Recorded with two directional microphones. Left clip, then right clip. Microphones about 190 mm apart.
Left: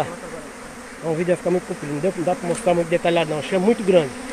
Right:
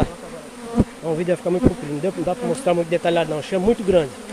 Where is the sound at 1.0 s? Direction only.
20° right (ahead or behind).